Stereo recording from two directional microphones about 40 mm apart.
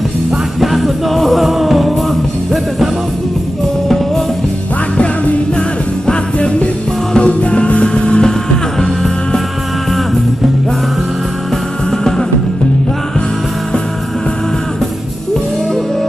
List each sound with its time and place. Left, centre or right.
0.6 s music: centre
4.9 s music: left
6.0 s music: left
8.7 s music: centre